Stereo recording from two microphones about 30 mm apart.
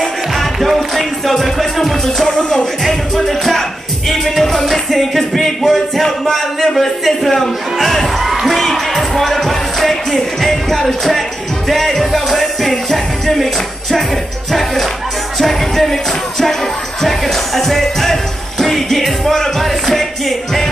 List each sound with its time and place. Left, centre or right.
0.4 s music: centre
2.2 s music: left
3.3 s music: centre
6.3 s a man's voice: centre
8.3 s music: centre
15.3 s music: centre
17.6 s music: centre